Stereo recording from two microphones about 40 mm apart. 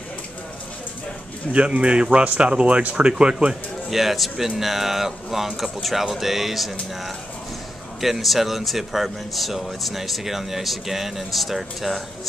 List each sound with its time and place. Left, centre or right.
1.5 s speech: right
3.9 s speech: centre